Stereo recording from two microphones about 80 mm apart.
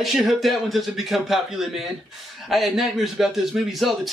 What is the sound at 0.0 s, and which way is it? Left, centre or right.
A man's voice, centre.